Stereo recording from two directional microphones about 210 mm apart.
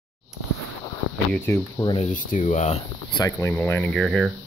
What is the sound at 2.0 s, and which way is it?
Speech, 35° left (ahead or behind).